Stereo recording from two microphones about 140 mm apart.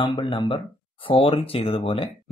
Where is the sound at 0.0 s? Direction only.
35° left (ahead or behind).